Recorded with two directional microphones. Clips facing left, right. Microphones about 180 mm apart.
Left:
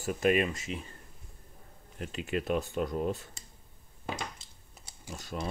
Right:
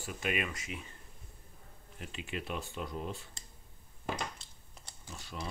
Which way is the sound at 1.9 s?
45° left (ahead or behind).